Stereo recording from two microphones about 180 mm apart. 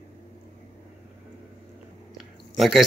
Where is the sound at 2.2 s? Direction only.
Centre (ahead or behind).